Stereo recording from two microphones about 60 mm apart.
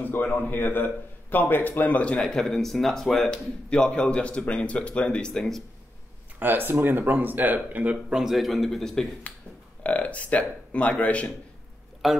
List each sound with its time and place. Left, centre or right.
0.0 s a man's voice: left
2.1 s speech: centre
6.4 s speech: right
8.1 s speech: centre
9.8 s speech: left
12.0 s speech: centre